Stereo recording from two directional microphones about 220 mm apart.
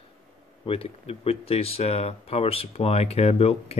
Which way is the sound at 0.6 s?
25° left (ahead or behind).